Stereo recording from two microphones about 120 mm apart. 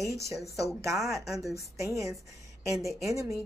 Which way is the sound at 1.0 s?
Centre (ahead or behind).